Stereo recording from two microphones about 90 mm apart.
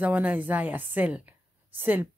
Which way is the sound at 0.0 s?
20° right (ahead or behind).